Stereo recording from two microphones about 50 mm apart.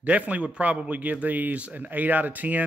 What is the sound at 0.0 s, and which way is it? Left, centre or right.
Speech, right.